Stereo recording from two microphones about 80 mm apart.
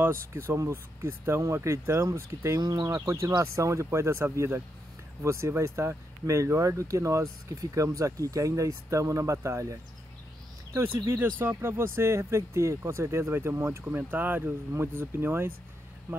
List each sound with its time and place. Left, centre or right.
0.0 s speech: right
2.6 s speech: right
2.9 s speech: right